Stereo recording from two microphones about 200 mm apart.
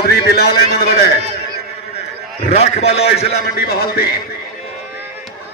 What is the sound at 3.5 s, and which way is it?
Speech, 50° left (ahead or behind).